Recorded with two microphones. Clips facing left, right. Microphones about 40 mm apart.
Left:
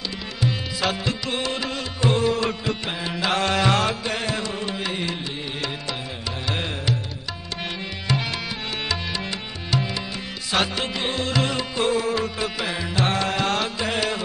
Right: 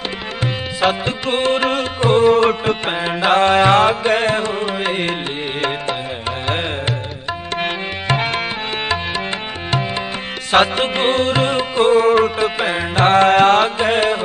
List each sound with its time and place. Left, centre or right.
0.4 s music: right
6.4 s music: right
10.5 s music: right